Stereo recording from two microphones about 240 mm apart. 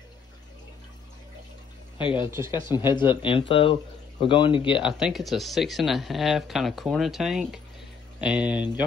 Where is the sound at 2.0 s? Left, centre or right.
Left.